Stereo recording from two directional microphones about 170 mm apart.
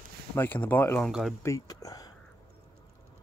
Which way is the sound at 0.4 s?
10° left (ahead or behind).